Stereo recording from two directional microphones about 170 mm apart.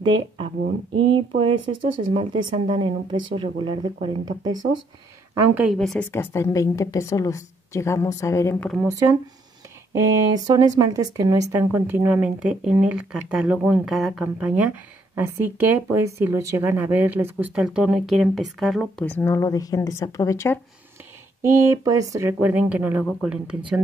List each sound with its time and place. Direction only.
0.0 s a sound: 30° right (ahead or behind)
0.9 s speech: 30° right (ahead or behind)
5.5 s speech: 10° right (ahead or behind)
5.8 s speech: 5° left (ahead or behind)
6.1 s a woman's voice: 15° left (ahead or behind)
9.9 s a sound: 20° right (ahead or behind)
10.8 s speech: 20° right (ahead or behind); by 19.0 s centre (ahead or behind)
19.0 s a woman's voice: 15° left (ahead or behind)
21.4 s speech: 20° right (ahead or behind)